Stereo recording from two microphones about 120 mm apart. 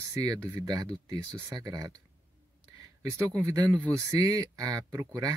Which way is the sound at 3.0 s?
25° right (ahead or behind).